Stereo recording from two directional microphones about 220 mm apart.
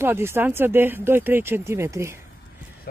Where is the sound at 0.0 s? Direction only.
10° right (ahead or behind).